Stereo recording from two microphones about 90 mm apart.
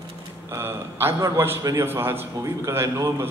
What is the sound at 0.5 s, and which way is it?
A man's voice, 25° right (ahead or behind).